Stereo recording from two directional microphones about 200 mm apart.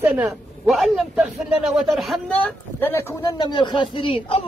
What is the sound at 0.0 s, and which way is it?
A man's voice, 10° right (ahead or behind).